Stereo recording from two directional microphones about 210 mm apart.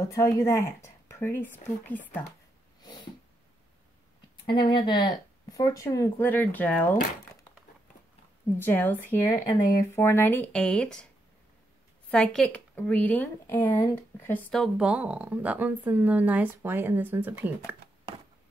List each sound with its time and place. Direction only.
0.0 s speech: 15° left (ahead or behind)
2.8 s cat: 20° left (ahead or behind)
4.6 s speech: 20° left (ahead or behind)
8.5 s speech: 10° left (ahead or behind)
12.1 s speech: centre (ahead or behind)